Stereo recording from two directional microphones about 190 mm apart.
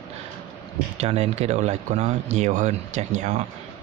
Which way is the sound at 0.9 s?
35° right (ahead or behind).